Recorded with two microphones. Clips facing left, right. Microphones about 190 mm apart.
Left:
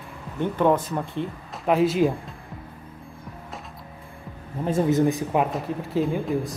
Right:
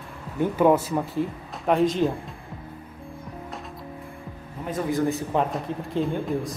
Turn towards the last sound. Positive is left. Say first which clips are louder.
# left 1 dB
turn(degrees=0)  # may be behind; listen again after turning